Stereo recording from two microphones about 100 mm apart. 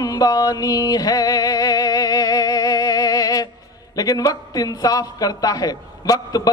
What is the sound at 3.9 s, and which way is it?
A man's voice, 40° left (ahead or behind).